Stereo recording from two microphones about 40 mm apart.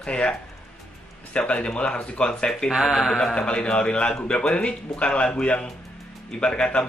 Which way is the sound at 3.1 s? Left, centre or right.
Left.